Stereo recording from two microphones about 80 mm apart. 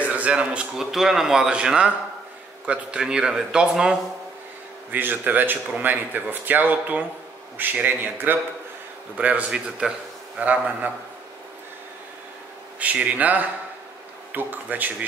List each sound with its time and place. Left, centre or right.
0.0 s a man's voice: centre
4.9 s a man's voice: right
12.7 s speech: centre